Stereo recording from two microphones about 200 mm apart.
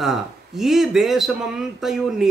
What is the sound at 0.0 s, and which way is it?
Speech, centre (ahead or behind).